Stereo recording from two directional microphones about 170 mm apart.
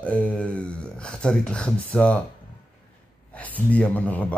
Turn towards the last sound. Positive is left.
turn(degrees=10)  # may be behind; listen again after turning